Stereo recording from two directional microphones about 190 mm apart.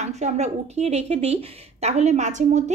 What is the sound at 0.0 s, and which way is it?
A woman's voice, 35° right (ahead or behind).